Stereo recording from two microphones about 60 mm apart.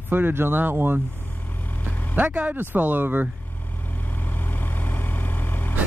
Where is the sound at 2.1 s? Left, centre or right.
Right.